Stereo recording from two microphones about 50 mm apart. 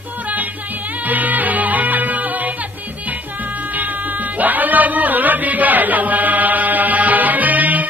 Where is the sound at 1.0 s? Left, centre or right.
Right.